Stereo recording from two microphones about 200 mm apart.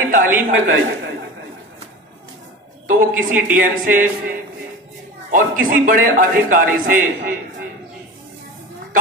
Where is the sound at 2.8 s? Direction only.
45° right (ahead or behind).